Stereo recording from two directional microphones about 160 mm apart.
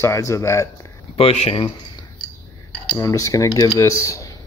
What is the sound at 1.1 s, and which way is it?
Speech, 40° left (ahead or behind).